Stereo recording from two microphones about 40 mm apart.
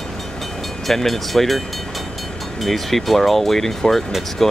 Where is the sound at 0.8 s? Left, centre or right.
Centre.